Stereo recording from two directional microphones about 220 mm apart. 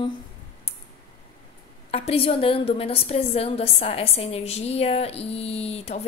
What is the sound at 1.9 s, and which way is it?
Speech, 25° left (ahead or behind).